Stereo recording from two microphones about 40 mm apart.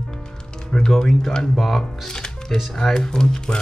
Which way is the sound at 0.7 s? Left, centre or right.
Centre.